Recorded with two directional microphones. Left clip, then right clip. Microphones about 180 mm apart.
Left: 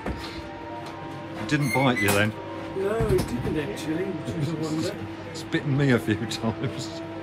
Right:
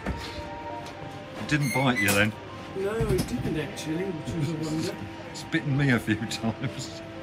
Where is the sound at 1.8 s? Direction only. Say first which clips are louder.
Left 1 dB; 15° left (ahead or behind).